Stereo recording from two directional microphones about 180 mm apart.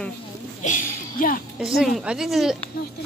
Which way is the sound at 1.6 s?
5° right (ahead or behind).